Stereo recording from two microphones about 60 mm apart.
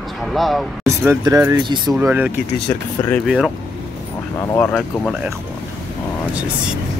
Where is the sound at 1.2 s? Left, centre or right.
Right.